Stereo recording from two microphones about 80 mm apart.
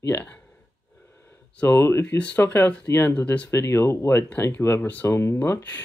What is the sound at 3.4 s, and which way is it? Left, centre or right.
Speech, left.